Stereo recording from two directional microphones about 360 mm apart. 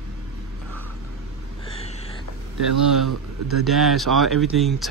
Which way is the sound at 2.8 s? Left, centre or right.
Centre.